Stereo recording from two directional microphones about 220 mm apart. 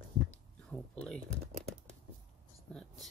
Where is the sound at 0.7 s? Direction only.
5° left (ahead or behind).